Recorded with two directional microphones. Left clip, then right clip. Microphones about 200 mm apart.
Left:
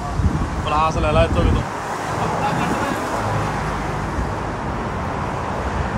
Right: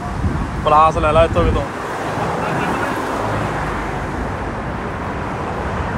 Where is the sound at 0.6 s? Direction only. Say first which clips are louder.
Right 7 dB; 10° left (ahead or behind).